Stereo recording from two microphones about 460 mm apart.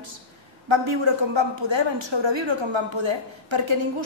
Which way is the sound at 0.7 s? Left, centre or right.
Right.